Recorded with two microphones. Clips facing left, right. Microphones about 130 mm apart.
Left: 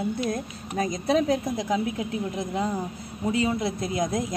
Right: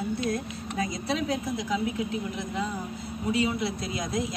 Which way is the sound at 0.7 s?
45° left (ahead or behind).